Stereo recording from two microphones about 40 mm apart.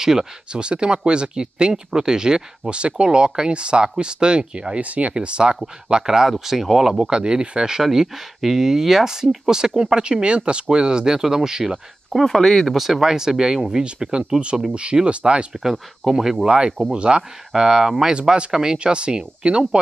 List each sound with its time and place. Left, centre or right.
0.0 s speech: centre
0.5 s speech: right
4.8 s speech: right
5.1 s speech: right
12.1 s speech: centre
12.7 s speech: centre; by 15.4 s right
15.6 s speech: centre
16.4 s speech: right
17.5 s speech: centre